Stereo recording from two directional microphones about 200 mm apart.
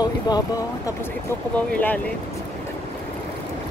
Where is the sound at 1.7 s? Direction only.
5° left (ahead or behind).